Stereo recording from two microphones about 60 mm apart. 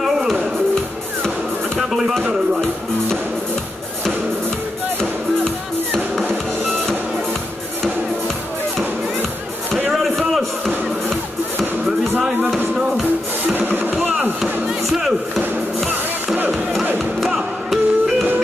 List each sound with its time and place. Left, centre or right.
0.0 s music: centre
1.8 s music: centre
9.8 s a sound: centre
12.2 s music: centre
13.5 s music: right
14.4 s music: centre
16.3 s music: right
17.2 s music: centre